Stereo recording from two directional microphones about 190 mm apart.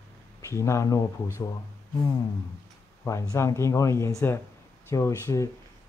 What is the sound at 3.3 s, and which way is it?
Speech, 15° left (ahead or behind).